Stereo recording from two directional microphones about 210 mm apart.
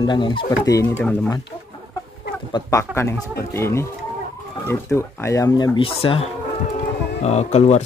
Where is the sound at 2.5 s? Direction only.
15° left (ahead or behind).